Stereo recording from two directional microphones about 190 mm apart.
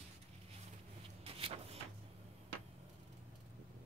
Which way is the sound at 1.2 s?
30° right (ahead or behind).